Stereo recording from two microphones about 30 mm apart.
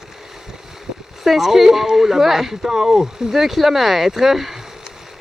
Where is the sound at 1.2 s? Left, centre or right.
Centre.